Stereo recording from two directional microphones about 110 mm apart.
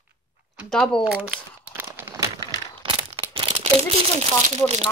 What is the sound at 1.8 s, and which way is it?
Crumpling, 20° right (ahead or behind).